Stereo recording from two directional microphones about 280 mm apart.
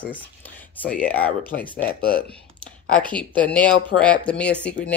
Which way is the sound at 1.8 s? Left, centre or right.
Left.